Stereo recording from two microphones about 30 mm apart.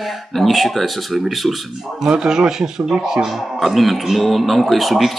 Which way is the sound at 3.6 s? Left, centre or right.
Centre.